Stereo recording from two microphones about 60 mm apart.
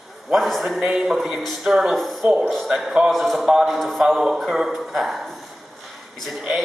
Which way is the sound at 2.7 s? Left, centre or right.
Centre.